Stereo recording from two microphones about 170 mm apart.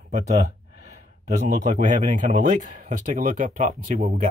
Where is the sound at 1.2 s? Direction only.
45° right (ahead or behind).